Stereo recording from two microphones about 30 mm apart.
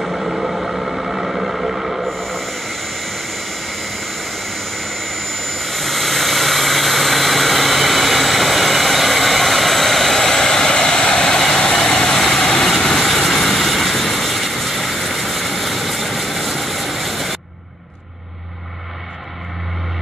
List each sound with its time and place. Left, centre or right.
0.0 s a sound: centre
0.7 s vehicle: centre
2.0 s jet engine: centre
10.7 s vehicle: left; by 17.4 s centre